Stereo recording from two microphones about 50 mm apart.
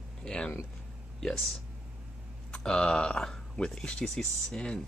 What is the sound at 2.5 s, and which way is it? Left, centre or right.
Speech, centre.